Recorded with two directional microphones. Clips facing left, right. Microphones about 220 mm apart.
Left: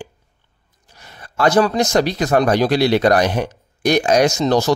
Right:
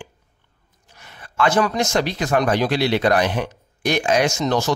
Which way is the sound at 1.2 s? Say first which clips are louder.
Left 4 dB; 40° left (ahead or behind).